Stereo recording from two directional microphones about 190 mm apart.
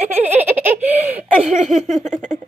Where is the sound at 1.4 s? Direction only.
40° right (ahead or behind).